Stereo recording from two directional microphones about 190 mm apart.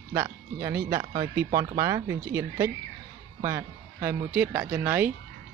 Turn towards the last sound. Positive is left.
turn(degrees=-10)  # may be behind; listen again after turning